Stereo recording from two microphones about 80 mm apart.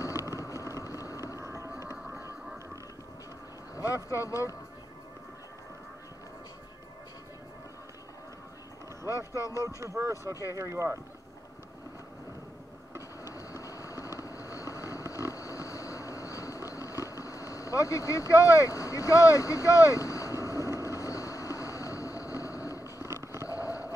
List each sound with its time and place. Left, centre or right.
0.0 s vehicle: left
1.4 s music: right
2.0 s a sound: centre
3.7 s speech: left
9.1 s speech: left
9.8 s speech: right
13.3 s vehicle: left
23.0 s vehicle: right
23.4 s a sound: left